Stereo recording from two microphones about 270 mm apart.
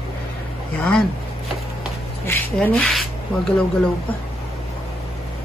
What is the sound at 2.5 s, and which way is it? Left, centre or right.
Speech, centre.